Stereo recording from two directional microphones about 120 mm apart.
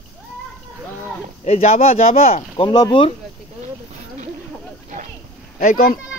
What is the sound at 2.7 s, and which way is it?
Speech, 35° left (ahead or behind).